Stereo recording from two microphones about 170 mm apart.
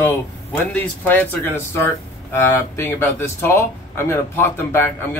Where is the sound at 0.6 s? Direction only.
10° left (ahead or behind).